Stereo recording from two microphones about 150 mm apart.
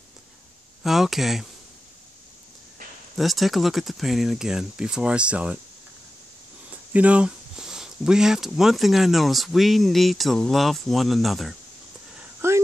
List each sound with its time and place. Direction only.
0.8 s speech: centre (ahead or behind)
3.2 s speech: centre (ahead or behind)
6.7 s speech: 10° right (ahead or behind)
12.2 s a sound: 15° right (ahead or behind)